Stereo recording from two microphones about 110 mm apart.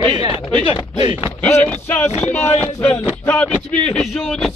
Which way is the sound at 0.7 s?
70° left (ahead or behind).